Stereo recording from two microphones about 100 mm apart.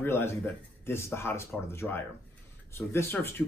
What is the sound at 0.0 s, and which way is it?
Speech, 25° left (ahead or behind).